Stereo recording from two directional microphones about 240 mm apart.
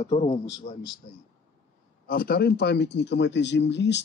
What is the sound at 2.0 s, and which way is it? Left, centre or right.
A man's voice, left.